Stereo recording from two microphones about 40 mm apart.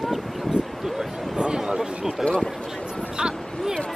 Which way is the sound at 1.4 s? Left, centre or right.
Centre.